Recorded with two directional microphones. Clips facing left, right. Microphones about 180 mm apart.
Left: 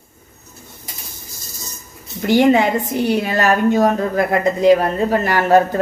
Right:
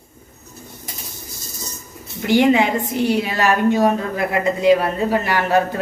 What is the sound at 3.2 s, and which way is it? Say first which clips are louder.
Speech: left 2 dB; 45° left (ahead or behind).